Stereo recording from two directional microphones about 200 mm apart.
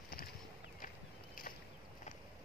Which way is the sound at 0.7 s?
45° left (ahead or behind).